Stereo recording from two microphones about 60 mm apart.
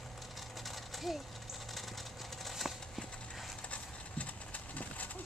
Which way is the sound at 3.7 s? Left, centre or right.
Left.